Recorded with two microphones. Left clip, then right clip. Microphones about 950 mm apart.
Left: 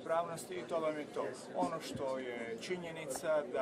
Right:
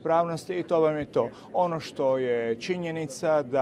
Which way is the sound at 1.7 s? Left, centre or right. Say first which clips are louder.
Right 13 dB; right.